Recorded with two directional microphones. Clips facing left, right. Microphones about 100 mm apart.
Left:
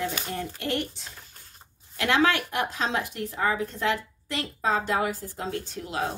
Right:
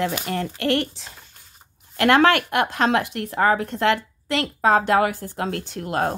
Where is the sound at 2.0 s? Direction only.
60° right (ahead or behind).